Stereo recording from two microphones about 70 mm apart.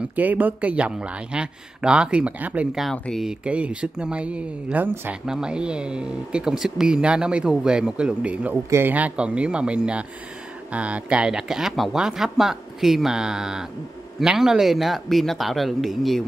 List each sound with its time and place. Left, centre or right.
0.1 s speech: right; by 16.3 s centre